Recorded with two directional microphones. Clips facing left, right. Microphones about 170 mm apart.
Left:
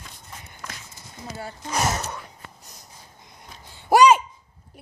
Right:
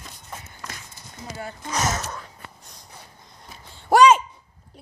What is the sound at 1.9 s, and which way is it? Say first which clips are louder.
Gasp: even; 10° left (ahead or behind).